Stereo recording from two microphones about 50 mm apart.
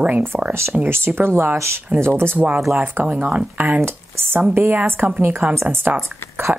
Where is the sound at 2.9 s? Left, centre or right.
Right.